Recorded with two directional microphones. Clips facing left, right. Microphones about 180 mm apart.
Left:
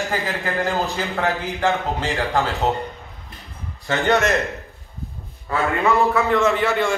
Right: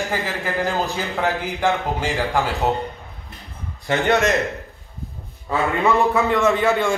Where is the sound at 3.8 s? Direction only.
15° right (ahead or behind).